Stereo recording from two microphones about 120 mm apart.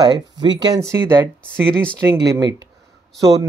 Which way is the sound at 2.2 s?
30° right (ahead or behind).